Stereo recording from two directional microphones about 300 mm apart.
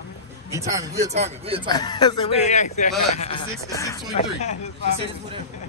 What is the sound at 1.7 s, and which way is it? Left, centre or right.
Speech, centre.